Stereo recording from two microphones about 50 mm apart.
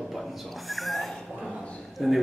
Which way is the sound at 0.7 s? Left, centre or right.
Centre.